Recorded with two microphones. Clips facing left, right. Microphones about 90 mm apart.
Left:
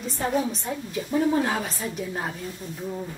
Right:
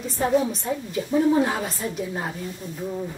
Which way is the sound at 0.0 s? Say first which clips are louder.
Right 4 dB; centre (ahead or behind).